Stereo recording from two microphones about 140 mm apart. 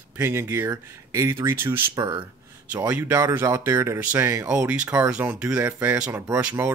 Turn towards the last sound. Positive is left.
turn(degrees=-20)  # may be behind; listen again after turning